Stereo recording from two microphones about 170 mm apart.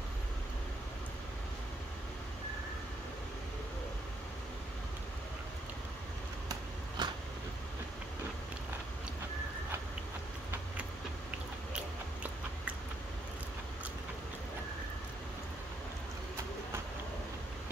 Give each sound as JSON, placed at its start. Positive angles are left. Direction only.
{"t": 7.0, "sound": "vehicle", "side_deg": -25}
{"t": 11.7, "sound": "biting", "side_deg": -5}